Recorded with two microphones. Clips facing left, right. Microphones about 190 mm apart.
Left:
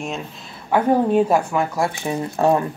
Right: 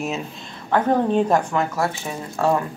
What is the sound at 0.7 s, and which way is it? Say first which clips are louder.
Speech: left 2 dB; 10° left (ahead or behind).